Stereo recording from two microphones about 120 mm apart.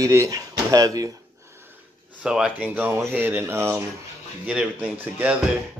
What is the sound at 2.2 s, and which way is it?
Speech, 10° right (ahead or behind).